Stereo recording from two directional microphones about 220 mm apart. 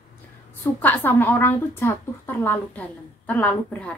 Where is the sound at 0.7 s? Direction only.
10° left (ahead or behind).